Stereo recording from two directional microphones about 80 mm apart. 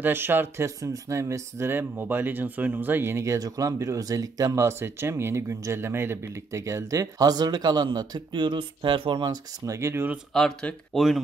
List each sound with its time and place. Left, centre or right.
0.0 s speech: right
0.7 s speech: right
9.7 s speech: right
10.3 s speech: centre